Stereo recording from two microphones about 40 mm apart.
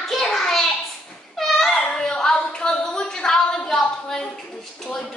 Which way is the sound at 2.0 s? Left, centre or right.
Centre.